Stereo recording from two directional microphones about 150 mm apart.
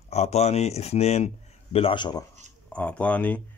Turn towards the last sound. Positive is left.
turn(degrees=10)  # may be behind; listen again after turning